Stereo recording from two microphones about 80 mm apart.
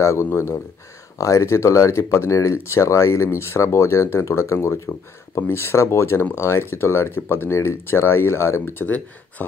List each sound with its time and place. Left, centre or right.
0.0 s speech: left